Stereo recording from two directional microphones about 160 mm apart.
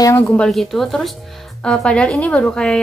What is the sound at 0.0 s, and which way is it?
A woman's voice, 15° left (ahead or behind).